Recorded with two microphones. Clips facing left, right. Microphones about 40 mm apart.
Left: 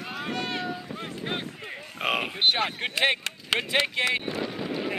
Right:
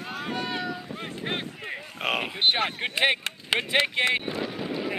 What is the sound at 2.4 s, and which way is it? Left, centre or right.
Speech, centre.